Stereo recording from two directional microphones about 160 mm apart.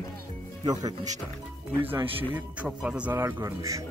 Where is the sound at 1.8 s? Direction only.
10° right (ahead or behind).